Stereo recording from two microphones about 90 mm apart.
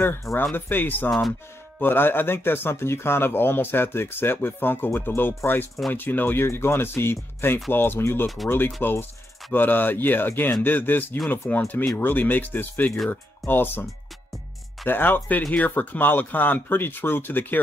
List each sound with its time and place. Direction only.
0.0 s speech: 30° left (ahead or behind)
14.9 s speech: 20° left (ahead or behind)